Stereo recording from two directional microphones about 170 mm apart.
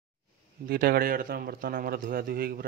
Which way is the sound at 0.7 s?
60° right (ahead or behind).